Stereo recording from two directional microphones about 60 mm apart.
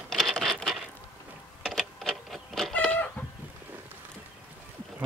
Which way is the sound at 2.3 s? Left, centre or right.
Centre.